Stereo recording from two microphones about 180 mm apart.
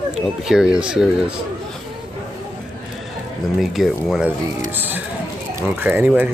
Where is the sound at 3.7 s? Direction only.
Centre (ahead or behind).